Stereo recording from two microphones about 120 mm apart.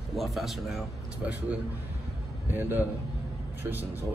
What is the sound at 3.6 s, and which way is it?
Speech, 15° right (ahead or behind).